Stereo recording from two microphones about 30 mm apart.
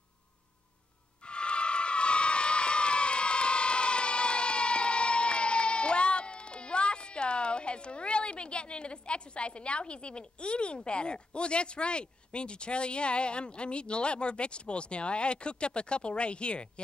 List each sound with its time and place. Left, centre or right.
1.2 s music: left